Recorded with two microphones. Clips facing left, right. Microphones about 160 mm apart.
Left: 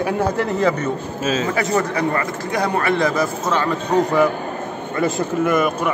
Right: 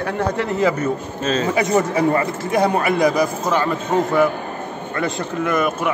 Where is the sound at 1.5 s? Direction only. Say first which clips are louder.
Right 2 dB; 20° right (ahead or behind); by 5.9 s centre (ahead or behind).